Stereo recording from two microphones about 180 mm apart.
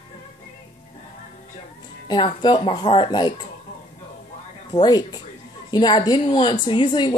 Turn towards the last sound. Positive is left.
turn(degrees=25)  # may be behind; listen again after turning